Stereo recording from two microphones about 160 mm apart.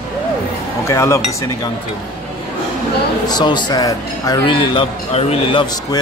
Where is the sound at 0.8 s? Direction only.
15° left (ahead or behind).